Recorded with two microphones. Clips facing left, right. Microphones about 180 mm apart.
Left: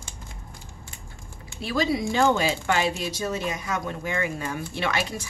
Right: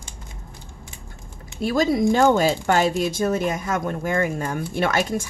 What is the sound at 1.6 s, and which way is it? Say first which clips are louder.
Speech: right 5 dB; 45° right (ahead or behind).